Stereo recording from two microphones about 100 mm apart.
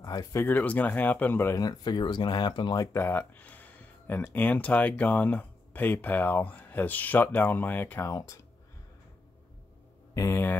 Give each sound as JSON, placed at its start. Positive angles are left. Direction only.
{"t": 0.0, "sound": "speech", "side_deg": 35}
{"t": 0.4, "sound": "speech", "side_deg": 15}
{"t": 1.6, "sound": "speech", "side_deg": 45}
{"t": 2.9, "sound": "speech", "side_deg": 20}
{"t": 10.1, "sound": "speech", "side_deg": 30}